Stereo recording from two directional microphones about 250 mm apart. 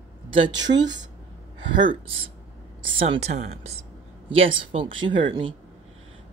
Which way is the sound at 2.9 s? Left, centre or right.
Right.